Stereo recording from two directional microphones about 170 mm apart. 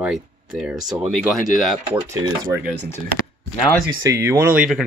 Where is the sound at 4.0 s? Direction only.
15° right (ahead or behind).